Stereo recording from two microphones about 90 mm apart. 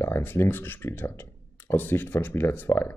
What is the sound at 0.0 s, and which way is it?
Speech, 25° left (ahead or behind).